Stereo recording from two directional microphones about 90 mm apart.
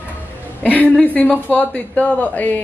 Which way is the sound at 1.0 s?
20° left (ahead or behind).